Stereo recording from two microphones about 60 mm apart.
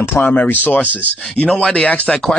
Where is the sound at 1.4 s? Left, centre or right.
Centre.